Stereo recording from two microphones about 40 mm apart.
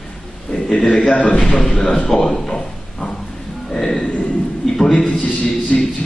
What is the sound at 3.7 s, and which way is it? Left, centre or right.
Music, centre.